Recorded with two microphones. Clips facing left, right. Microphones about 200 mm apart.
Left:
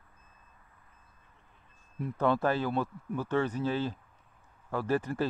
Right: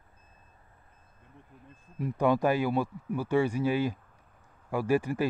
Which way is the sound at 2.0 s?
10° right (ahead or behind).